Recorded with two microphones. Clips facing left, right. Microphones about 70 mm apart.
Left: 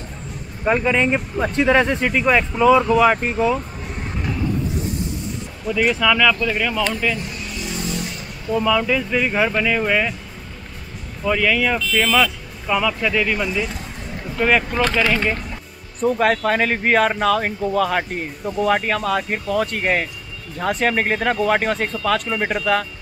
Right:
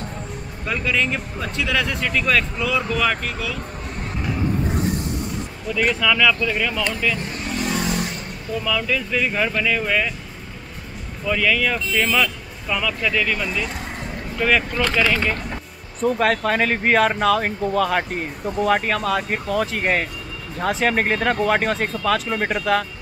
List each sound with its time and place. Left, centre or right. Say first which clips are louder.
0.7 s speech: left 5 dB; left
2.0 s speech: left 3 dB; left
2.9 s speech: left 7 dB; centre
3.2 s speech: left 8 dB; left
4.6 s vehicle: right 2 dB; right
5.7 s speech: left 2 dB; centre
7.2 s vehicle: right 3 dB; right
7.7 s vehicle: right 1 dB; right
8.5 s speech: left 5 dB; centre
11.2 s speech: left 2 dB; centre
16.0 s speech: left 1 dB; centre